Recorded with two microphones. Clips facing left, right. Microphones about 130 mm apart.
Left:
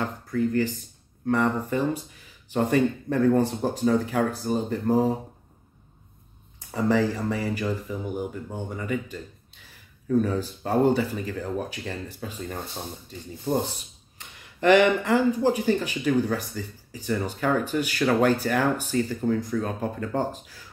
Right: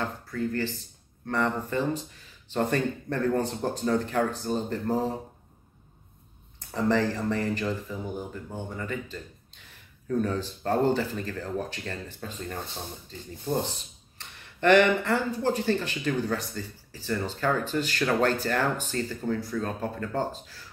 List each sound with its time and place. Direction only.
0.3 s speech: 15° left (ahead or behind)
6.7 s speech: 10° left (ahead or behind)
14.1 s speech: 10° left (ahead or behind)